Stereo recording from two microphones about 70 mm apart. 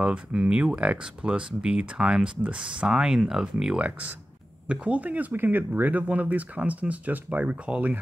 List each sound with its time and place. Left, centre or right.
0.0 s speech: centre